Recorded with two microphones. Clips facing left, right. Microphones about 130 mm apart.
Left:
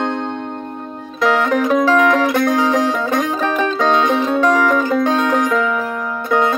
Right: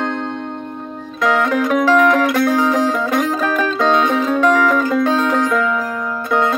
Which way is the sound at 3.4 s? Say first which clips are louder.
Even; 25° left (ahead or behind).